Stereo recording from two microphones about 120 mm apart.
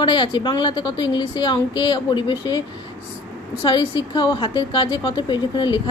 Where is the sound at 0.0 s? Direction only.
40° left (ahead or behind).